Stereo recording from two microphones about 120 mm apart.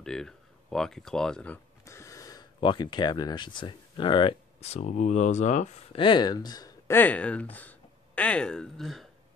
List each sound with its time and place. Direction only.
0.0 s speech: 5° left (ahead or behind)
1.9 s a sound: 25° left (ahead or behind)
2.6 s speech: 40° left (ahead or behind)
4.6 s speech: 60° left (ahead or behind)
5.9 s speech: 40° left (ahead or behind)
6.9 s speech: 15° left (ahead or behind)